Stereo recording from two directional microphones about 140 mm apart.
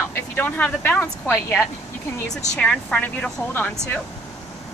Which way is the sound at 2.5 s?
5° left (ahead or behind).